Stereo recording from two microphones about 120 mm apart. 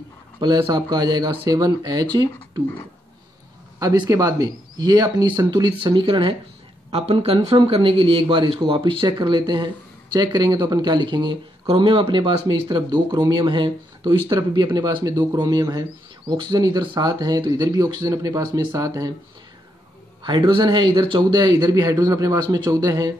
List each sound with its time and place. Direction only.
0.4 s speech: 40° right (ahead or behind)
3.8 s speech: 35° right (ahead or behind)
6.9 s speech: 55° right (ahead or behind); by 19.1 s 30° right (ahead or behind)
20.2 s speech: 40° right (ahead or behind)